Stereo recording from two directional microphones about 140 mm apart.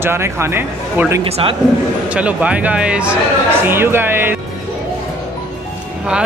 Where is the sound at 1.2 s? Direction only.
45° right (ahead or behind).